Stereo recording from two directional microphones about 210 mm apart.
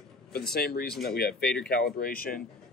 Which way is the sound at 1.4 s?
5° left (ahead or behind).